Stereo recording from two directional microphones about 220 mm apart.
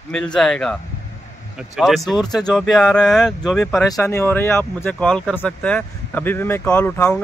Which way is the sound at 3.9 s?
10° left (ahead or behind).